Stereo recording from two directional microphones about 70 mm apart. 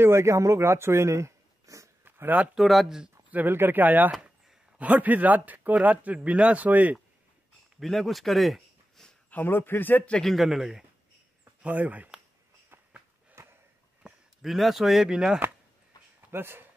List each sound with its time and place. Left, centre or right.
0.0 s speech: right
2.0 s speech: right
2.5 s speech: centre
3.3 s speech: right
4.1 s a sound: centre
4.7 s speech: right
7.8 s speech: centre
9.3 s speech: left
10.1 s speech: centre
11.6 s speech: right
13.3 s a sound: right
14.4 s speech: centre
16.3 s speech: right